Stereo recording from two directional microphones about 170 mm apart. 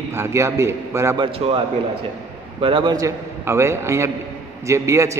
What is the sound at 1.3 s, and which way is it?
A man's voice, 35° right (ahead or behind).